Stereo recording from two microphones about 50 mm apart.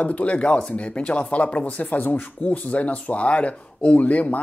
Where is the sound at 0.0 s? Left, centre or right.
Left.